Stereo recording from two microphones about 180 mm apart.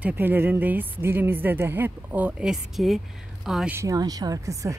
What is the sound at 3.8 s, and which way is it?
Speech, 20° right (ahead or behind).